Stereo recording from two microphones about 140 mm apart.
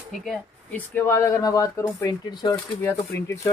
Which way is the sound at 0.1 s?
Centre (ahead or behind).